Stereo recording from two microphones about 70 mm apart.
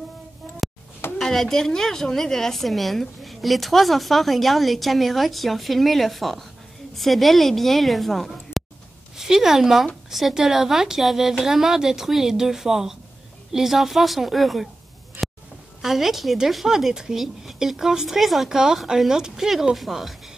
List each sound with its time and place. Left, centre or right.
1.1 s speech: centre
15.2 s a sound: right
15.8 s speech: centre